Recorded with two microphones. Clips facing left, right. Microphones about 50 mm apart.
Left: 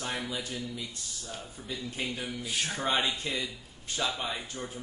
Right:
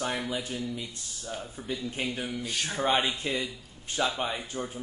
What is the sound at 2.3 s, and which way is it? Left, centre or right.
Speech, centre.